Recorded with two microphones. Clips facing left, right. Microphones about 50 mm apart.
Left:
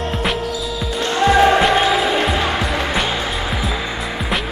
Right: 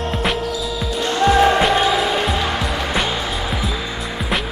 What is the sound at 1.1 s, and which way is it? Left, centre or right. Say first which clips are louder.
Music: left 1 dB; centre.